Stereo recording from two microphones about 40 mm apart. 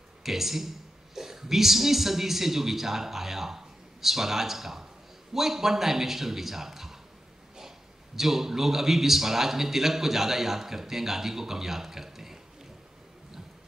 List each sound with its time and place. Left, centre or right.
0.2 s a man's voice: centre
8.2 s a man's voice: centre